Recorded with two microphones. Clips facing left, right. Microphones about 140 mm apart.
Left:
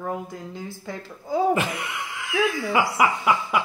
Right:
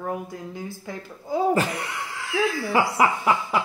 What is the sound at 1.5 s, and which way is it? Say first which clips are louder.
Speech: right 1 dB; 35° right (ahead or behind).